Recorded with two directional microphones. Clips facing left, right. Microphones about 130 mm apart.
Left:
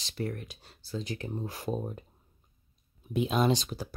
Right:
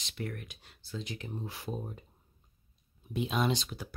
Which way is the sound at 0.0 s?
35° left (ahead or behind).